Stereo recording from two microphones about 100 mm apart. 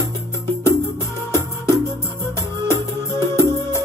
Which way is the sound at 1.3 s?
30° left (ahead or behind).